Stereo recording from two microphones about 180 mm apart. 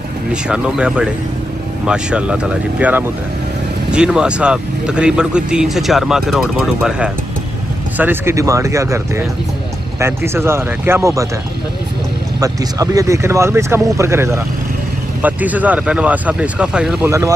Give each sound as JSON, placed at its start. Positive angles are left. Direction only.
{"t": 0.3, "sound": "speech", "side_deg": -5}
{"t": 8.0, "sound": "speech", "side_deg": -10}
{"t": 12.4, "sound": "speech", "side_deg": -20}